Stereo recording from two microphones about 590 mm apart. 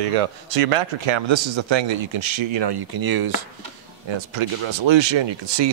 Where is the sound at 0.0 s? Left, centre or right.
Right.